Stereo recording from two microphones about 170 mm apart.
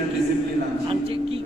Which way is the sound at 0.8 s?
35° right (ahead or behind).